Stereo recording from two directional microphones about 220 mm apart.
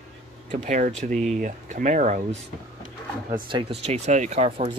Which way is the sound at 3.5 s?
25° right (ahead or behind).